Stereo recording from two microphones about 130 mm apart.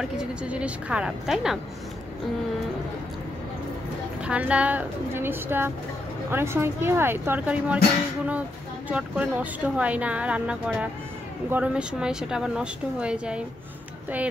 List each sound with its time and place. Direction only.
0.0 s a woman's voice: 5° right (ahead or behind)
4.2 s speech: 10° right (ahead or behind)